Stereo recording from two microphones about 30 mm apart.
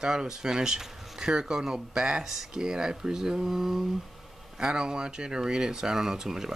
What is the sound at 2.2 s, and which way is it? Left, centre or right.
Speech, centre.